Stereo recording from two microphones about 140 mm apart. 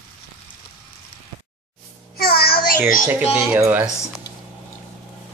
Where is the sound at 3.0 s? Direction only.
15° right (ahead or behind).